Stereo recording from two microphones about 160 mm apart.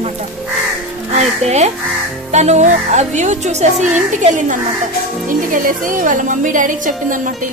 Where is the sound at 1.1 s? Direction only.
45° right (ahead or behind).